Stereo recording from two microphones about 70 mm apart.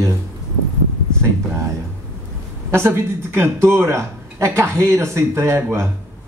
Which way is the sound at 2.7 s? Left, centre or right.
Right.